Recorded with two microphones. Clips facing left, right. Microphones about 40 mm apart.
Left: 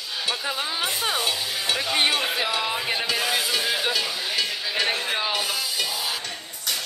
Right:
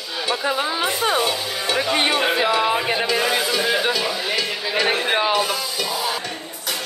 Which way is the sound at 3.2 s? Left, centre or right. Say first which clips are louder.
Right 4 dB; centre.